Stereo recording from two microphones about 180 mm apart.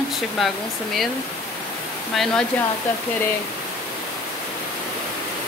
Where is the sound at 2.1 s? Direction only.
Centre (ahead or behind).